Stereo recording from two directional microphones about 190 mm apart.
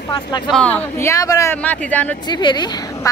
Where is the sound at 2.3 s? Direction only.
25° left (ahead or behind).